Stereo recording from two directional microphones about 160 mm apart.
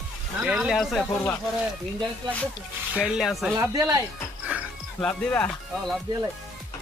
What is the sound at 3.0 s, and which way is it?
Speech, centre (ahead or behind).